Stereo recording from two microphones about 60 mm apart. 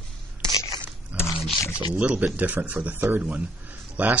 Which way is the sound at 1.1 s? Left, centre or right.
Right.